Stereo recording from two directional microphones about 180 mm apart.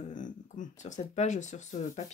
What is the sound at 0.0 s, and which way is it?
Speech, 45° left (ahead or behind).